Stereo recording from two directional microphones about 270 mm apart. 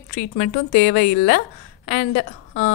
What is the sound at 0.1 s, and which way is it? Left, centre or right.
A woman's voice, left.